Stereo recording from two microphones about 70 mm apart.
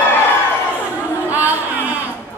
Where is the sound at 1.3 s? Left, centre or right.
Right.